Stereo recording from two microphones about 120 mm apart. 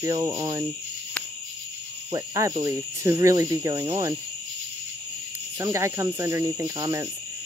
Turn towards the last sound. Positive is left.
turn(degrees=-30)  # may be behind; listen again after turning